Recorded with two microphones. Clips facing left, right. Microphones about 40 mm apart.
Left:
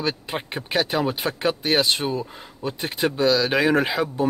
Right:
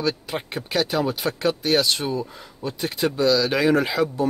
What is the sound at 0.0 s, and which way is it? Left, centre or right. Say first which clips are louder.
Speech: right 1 dB; left.